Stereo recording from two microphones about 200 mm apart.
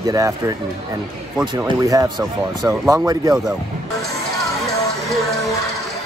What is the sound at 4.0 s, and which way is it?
Music, centre (ahead or behind).